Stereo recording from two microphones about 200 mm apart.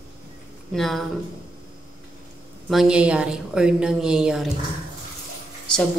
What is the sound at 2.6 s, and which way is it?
A woman's voice, 5° right (ahead or behind).